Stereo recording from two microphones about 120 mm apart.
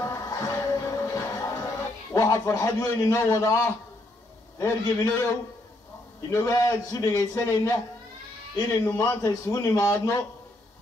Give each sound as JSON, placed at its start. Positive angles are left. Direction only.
{"t": 0.0, "sound": "music", "side_deg": 30}
{"t": 5.1, "sound": "speech", "side_deg": 30}